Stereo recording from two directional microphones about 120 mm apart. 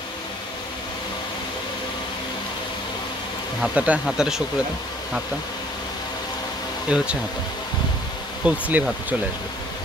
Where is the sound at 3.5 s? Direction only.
10° right (ahead or behind).